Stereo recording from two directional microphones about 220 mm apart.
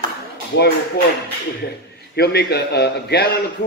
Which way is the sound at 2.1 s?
50° left (ahead or behind).